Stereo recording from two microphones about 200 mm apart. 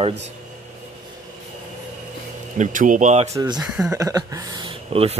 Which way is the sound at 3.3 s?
20° right (ahead or behind).